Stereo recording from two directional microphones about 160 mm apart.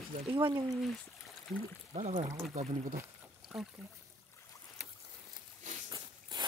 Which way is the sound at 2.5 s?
50° right (ahead or behind).